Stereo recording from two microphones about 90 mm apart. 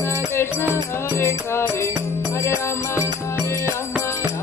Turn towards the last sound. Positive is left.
turn(degrees=30)  # may be behind; listen again after turning